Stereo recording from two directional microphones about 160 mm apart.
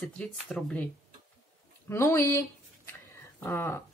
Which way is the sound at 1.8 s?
15° left (ahead or behind).